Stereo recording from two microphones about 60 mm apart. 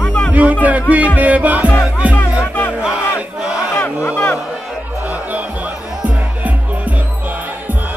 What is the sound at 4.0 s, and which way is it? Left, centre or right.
Speech, left.